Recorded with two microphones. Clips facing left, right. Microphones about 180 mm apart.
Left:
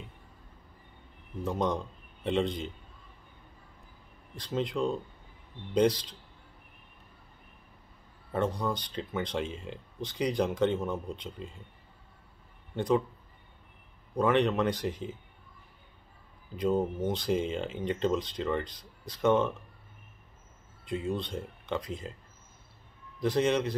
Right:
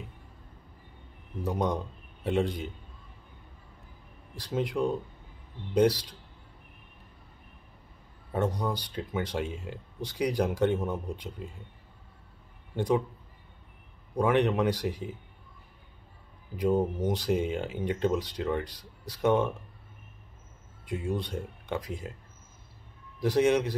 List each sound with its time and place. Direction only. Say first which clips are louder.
1.4 s a man's voice: right 1 dB; 10° right (ahead or behind)
4.4 s speech: right 1 dB; 10° right (ahead or behind)
8.3 s speech: right 1 dB; 10° right (ahead or behind)
12.7 s speech: even; 10° right (ahead or behind)
14.1 s speech: right 1 dB; 10° right (ahead or behind)
16.5 s speech: right 2 dB; 10° right (ahead or behind)
20.8 s speech: even; 10° right (ahead or behind)
23.2 s speech: right 3 dB; 10° right (ahead or behind)